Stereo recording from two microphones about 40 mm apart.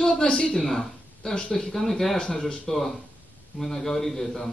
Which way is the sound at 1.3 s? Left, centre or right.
Left.